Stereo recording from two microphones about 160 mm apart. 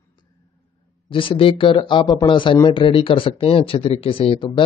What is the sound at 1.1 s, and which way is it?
Speech, 35° left (ahead or behind).